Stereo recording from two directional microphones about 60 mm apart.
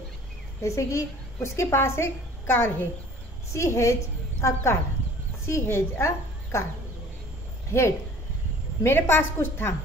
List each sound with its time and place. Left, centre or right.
0.6 s a woman's voice: left
3.5 s speech: left
5.5 s a woman's voice: left
8.8 s a woman's voice: left